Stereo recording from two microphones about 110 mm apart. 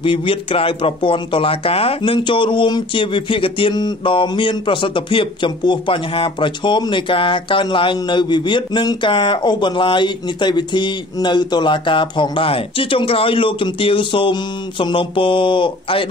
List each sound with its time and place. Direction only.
0.0 s speech: 50° left (ahead or behind)